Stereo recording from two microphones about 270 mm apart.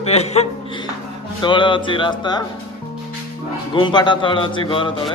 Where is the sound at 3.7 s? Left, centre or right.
Centre.